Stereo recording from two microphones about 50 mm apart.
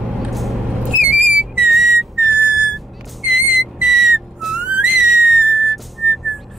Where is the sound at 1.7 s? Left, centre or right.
Centre.